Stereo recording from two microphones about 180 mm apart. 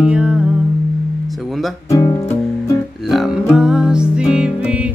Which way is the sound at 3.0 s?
Centre (ahead or behind).